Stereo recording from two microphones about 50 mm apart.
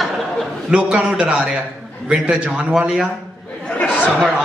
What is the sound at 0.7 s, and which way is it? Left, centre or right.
A man's voice, right.